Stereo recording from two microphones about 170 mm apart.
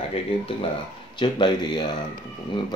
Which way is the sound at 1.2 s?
25° left (ahead or behind).